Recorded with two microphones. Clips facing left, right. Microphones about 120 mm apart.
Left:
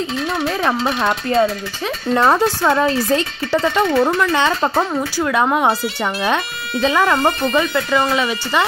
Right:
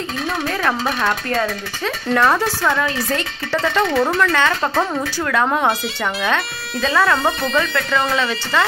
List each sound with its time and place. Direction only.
0.5 s speech: 15° left (ahead or behind)
3.5 s speech: 10° left (ahead or behind)